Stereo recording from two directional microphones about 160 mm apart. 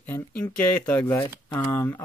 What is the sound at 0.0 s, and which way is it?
Speech, 10° left (ahead or behind).